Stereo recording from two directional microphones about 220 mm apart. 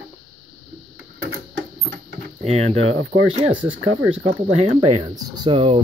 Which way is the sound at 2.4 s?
30° right (ahead or behind).